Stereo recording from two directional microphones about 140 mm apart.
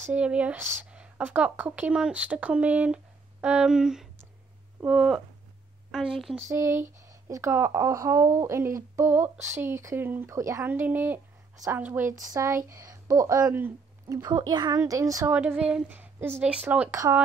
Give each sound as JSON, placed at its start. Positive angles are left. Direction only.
{"t": 0.0, "sound": "a woman's voice", "side_deg": -10}
{"t": 6.5, "sound": "speech", "side_deg": -20}
{"t": 11.5, "sound": "a woman's voice", "side_deg": -25}
{"t": 11.8, "sound": "speech", "side_deg": -15}
{"t": 15.6, "sound": "speech", "side_deg": -10}
{"t": 16.9, "sound": "speech", "side_deg": -20}